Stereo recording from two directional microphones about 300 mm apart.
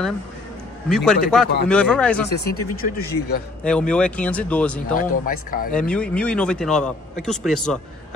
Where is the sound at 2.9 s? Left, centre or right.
Left.